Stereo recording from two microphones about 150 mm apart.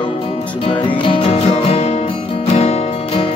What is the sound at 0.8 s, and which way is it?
Music, 35° left (ahead or behind).